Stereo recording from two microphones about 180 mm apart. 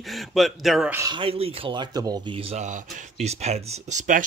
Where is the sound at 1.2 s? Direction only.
30° right (ahead or behind).